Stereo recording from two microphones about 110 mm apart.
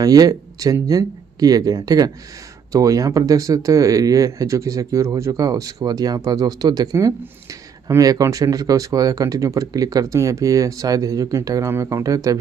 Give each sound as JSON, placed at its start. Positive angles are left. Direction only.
{"t": 0.0, "sound": "speech", "side_deg": -35}